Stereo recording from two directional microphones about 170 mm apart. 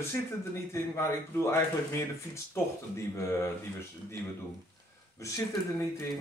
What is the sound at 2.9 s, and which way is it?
Speech, 15° left (ahead or behind).